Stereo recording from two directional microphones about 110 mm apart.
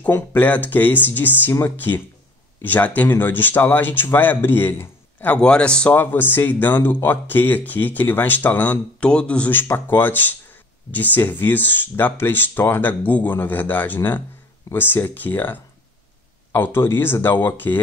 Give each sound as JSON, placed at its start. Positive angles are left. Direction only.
{"t": 0.0, "sound": "speech", "side_deg": 15}